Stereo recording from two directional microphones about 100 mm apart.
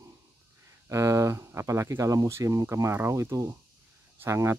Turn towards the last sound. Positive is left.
turn(degrees=-30)  # may be behind; listen again after turning